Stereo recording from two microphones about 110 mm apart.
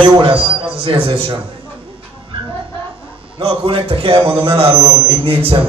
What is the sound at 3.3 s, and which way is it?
A man's voice, 55° right (ahead or behind).